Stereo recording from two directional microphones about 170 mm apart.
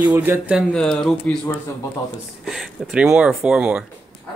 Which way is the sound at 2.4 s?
Centre (ahead or behind).